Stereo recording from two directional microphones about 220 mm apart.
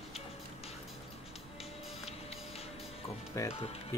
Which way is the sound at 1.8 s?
25° left (ahead or behind).